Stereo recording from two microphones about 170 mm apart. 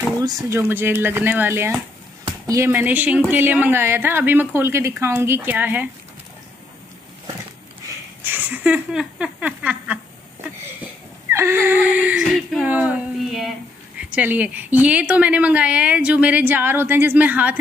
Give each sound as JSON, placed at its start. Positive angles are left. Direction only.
{"t": 0.2, "sound": "a woman's voice", "side_deg": -20}
{"t": 8.2, "sound": "a woman's voice", "side_deg": -10}
{"t": 11.2, "sound": "a woman's voice", "side_deg": -15}